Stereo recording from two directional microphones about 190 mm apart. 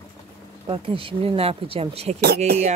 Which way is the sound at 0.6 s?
30° right (ahead or behind).